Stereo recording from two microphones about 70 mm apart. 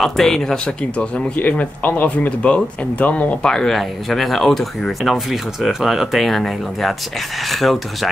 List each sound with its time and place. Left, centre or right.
0.0 s speech: centre; by 3.3 s left
3.4 s speech: centre